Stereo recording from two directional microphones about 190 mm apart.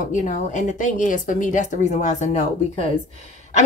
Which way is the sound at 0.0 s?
40° left (ahead or behind).